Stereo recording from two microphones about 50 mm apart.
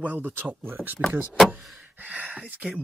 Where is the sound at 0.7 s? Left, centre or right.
Right.